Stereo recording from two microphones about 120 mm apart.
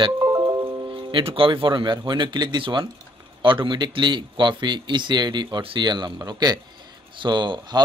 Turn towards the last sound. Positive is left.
turn(degrees=-40)  # may be behind; listen again after turning